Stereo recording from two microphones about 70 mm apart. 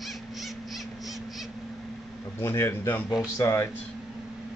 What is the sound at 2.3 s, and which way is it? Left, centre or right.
A man's voice, left.